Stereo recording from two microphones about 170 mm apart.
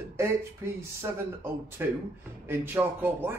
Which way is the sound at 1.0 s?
15° right (ahead or behind).